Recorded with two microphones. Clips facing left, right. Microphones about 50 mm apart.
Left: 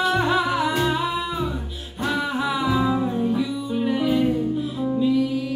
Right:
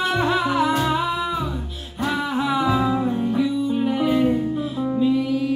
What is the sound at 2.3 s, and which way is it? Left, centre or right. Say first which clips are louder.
Music: right 2 dB; right.